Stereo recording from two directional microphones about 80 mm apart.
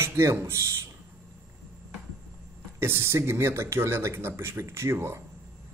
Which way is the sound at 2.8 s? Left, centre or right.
Right.